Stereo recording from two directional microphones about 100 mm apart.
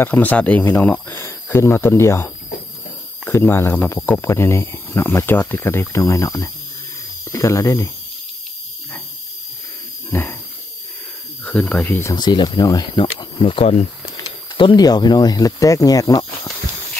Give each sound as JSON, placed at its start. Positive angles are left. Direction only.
{"t": 0.0, "sound": "speech", "side_deg": 15}
{"t": 10.1, "sound": "speech", "side_deg": 25}
{"t": 11.4, "sound": "speech", "side_deg": 10}
{"t": 12.1, "sound": "speech", "side_deg": 45}
{"t": 13.4, "sound": "speech", "side_deg": 70}
{"t": 14.8, "sound": "speech", "side_deg": 45}